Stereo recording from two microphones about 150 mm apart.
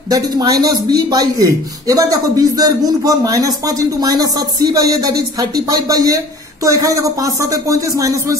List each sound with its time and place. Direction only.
0.1 s speech: 25° right (ahead or behind)